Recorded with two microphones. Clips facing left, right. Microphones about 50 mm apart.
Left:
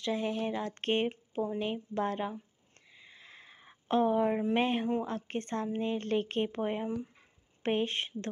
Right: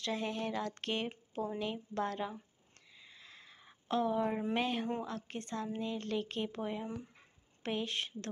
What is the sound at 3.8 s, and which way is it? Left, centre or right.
Speech, left.